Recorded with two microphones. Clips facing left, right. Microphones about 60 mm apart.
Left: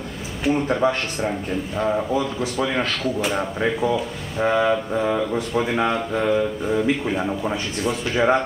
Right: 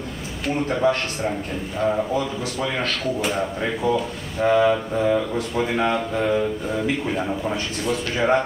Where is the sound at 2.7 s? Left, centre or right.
Centre.